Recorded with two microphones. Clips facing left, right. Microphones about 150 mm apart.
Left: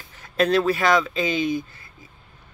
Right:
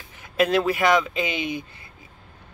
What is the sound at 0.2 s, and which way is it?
Speech, 15° right (ahead or behind).